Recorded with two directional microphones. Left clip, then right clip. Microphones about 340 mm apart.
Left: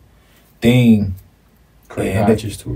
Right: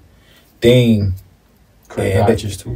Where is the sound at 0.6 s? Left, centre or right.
Centre.